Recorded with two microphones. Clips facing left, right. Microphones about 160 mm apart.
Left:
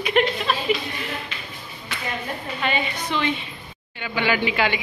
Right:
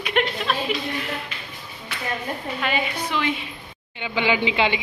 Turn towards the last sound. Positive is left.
turn(degrees=-20)  # may be behind; listen again after turning